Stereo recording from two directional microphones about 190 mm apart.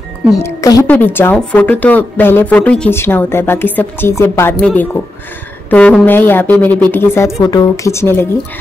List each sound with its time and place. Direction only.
0.4 s speech: 15° left (ahead or behind)